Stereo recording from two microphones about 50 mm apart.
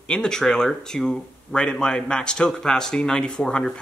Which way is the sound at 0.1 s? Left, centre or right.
Centre.